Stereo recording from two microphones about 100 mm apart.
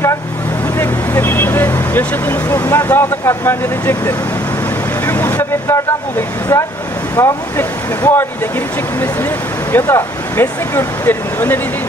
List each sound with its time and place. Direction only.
0.7 s speech: 20° left (ahead or behind)